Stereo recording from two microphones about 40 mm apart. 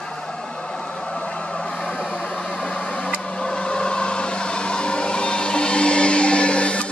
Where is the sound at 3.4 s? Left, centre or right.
Left.